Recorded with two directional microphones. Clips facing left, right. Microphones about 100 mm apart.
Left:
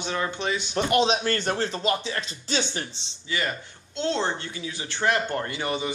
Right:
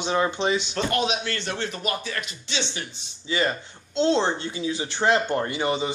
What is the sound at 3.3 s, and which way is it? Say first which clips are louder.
Speech: right 4 dB; 25° right (ahead or behind).